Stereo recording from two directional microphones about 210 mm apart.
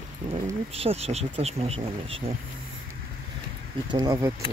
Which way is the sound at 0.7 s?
30° right (ahead or behind).